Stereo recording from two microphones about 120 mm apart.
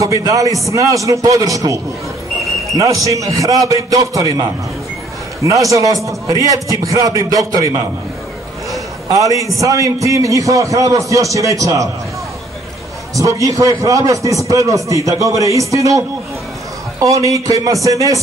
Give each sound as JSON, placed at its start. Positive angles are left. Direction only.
{"t": 0.0, "sound": "a man's voice", "side_deg": -30}
{"t": 9.1, "sound": "a man's voice", "side_deg": -30}
{"t": 13.1, "sound": "a man's voice", "side_deg": -25}
{"t": 17.0, "sound": "a man's voice", "side_deg": -25}